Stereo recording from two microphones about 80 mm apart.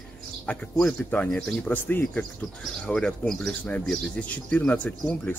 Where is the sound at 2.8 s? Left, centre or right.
Centre.